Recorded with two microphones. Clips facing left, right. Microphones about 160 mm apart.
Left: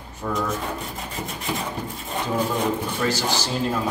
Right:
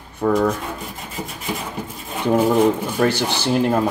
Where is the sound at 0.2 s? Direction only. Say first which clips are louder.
Right 10 dB; 60° right (ahead or behind).